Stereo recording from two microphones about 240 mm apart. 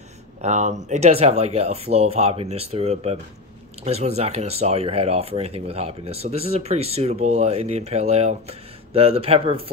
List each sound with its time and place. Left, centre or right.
0.4 s speech: right